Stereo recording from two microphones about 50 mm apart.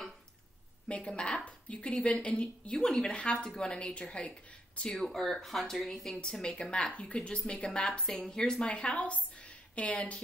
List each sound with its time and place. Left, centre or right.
0.8 s a woman's voice: left
4.8 s a woman's voice: centre
8.0 s speech: centre
8.6 s a woman's voice: left